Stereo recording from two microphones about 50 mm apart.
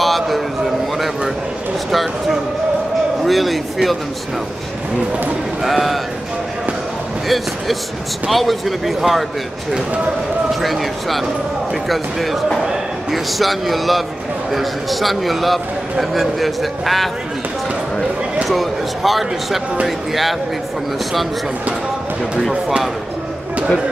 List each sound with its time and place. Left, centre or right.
0.0 s a sound: centre
1.9 s a man's voice: centre
5.6 s a man's voice: centre
7.2 s a man's voice: centre
10.6 s a man's voice: centre
18.5 s a man's voice: centre
22.5 s speech: centre